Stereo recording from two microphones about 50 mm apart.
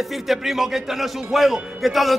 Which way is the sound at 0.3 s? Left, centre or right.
Centre.